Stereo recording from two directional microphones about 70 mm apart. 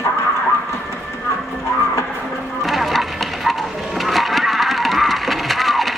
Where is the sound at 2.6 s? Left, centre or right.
Centre.